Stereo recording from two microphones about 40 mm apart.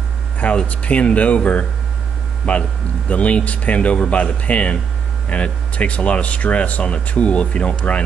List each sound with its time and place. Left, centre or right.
0.7 s speech: left